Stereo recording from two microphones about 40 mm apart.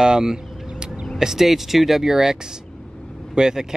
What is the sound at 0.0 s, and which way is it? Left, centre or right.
Speech, centre.